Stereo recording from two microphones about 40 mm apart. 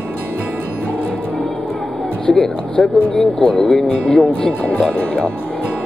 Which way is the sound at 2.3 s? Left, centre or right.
Left.